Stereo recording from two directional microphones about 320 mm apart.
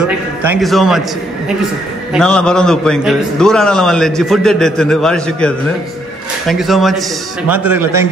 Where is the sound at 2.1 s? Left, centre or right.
Centre.